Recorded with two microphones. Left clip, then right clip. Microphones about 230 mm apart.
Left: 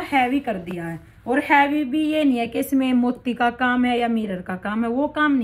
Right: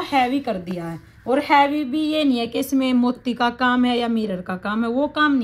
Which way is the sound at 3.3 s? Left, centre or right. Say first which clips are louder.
Even; right.